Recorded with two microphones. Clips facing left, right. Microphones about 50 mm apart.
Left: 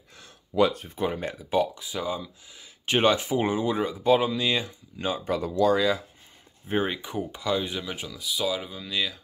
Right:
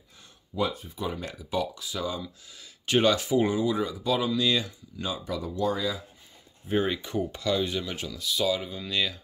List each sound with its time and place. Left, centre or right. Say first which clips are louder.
0.2 s a sound: left 7 dB; left
0.8 s speech: left 4 dB; left
1.2 s speech: left 5 dB; left
5.5 s speech: left 6 dB; left
6.7 s speech: even; centre